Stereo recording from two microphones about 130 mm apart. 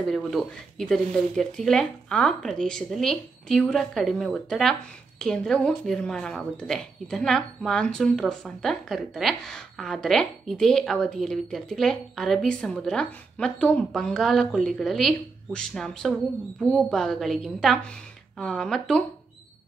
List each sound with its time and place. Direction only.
0.0 s a woman's voice: centre (ahead or behind)